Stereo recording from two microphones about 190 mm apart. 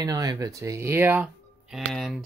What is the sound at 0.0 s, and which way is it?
Speech, 20° right (ahead or behind).